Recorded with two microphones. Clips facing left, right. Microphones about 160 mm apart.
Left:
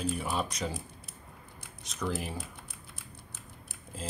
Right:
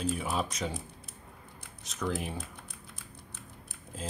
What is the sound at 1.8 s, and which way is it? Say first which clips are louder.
Speech: right 1 dB; centre (ahead or behind).